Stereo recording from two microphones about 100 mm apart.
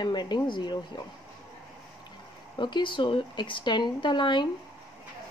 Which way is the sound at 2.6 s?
50° left (ahead or behind).